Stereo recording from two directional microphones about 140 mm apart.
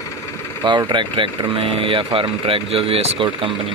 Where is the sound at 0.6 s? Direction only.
35° right (ahead or behind).